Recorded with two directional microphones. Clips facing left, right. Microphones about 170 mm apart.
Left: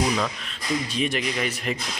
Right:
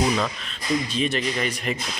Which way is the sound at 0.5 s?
10° left (ahead or behind).